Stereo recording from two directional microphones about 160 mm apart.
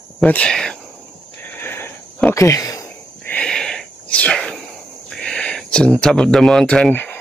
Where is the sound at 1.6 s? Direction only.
15° left (ahead or behind).